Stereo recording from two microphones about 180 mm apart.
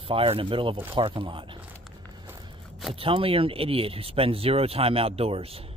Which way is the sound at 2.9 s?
30° right (ahead or behind).